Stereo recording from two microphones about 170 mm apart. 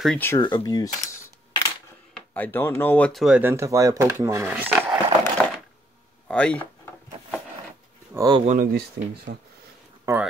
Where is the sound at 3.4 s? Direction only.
15° right (ahead or behind).